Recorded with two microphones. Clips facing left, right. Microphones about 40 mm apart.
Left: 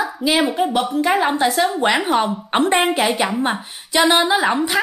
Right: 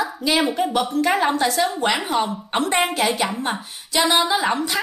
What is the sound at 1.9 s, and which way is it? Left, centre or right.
A woman's voice, left.